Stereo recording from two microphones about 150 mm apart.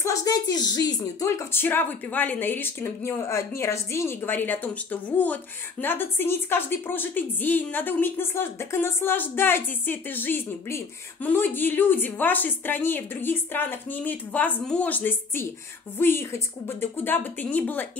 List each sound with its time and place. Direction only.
0.0 s a woman's voice: 20° left (ahead or behind)